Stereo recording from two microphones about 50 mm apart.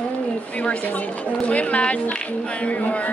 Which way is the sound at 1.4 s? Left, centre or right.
Left.